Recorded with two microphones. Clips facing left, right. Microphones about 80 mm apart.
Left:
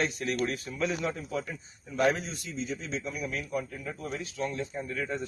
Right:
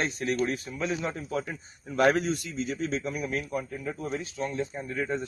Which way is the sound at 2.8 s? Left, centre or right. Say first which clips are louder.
Right 5 dB; right.